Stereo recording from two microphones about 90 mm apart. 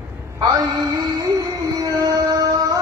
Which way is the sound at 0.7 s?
40° right (ahead or behind).